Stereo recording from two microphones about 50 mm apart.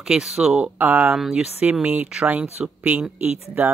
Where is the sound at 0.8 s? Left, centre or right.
Right.